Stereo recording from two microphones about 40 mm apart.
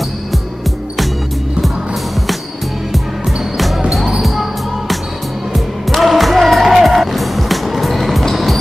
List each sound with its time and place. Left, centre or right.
3.5 s basketball bounce: centre
4.2 s music: centre
5.9 s music: centre